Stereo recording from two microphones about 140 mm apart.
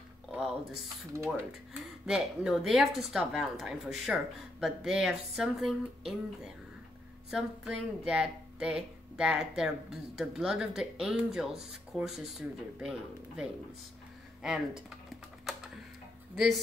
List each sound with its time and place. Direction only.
1.1 s speech: 20° right (ahead or behind)
1.8 s a woman's voice: 5° right (ahead or behind)
14.4 s a woman's voice: 5° right (ahead or behind)